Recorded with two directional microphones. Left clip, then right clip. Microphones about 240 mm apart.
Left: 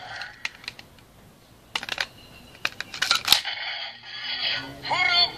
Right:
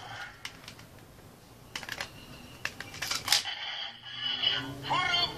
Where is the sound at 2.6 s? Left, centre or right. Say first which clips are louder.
Left 8 dB; left.